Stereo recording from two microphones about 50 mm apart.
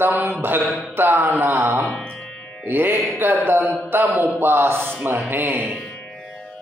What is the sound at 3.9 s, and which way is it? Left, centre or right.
A man's voice, right.